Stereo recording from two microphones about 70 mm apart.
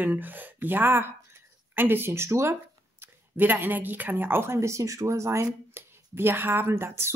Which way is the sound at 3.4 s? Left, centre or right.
Right.